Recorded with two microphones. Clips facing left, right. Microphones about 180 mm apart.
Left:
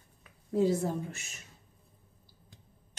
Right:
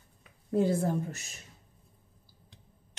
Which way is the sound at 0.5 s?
55° right (ahead or behind).